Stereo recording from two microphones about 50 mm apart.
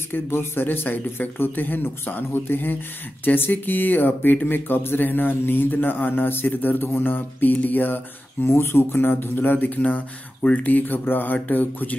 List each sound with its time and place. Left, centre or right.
0.1 s speech: left